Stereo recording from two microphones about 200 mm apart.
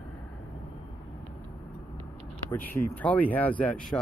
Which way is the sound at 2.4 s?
10° left (ahead or behind).